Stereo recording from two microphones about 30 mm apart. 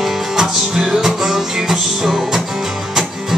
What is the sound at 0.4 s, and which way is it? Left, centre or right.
Music, centre.